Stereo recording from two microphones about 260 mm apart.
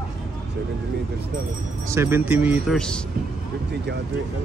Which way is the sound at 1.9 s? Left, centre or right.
Centre.